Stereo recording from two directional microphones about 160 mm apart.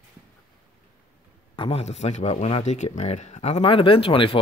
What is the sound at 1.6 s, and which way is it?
Speech, 40° left (ahead or behind).